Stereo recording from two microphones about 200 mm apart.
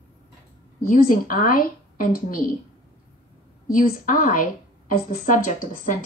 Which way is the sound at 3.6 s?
45° left (ahead or behind).